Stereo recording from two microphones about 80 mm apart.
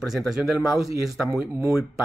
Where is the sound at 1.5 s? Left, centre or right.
Right.